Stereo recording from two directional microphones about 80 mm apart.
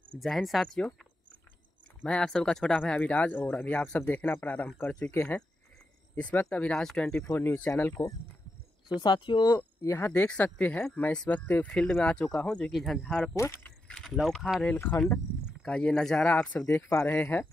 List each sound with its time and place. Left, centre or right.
0.2 s speech: centre
2.0 s speech: centre
6.5 s speech: centre
7.3 s speech: left
9.0 s speech: left
9.8 s speech: left
10.1 s speech: centre
11.7 s speech: centre
13.3 s speech: left
13.8 s mechanisms: centre
14.1 s speech: centre
14.8 s speech: centre
16.6 s speech: left